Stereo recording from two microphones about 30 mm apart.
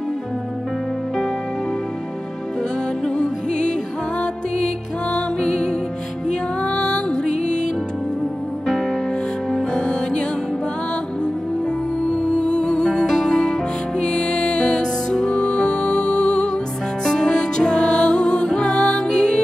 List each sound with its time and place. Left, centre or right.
3.1 s music: left
5.1 s music: left
7.1 s music: left
8.6 s music: centre
9.8 s music: left
12.1 s music: left
13.9 s music: left